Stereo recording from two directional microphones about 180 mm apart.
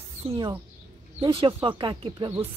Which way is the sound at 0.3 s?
15° right (ahead or behind).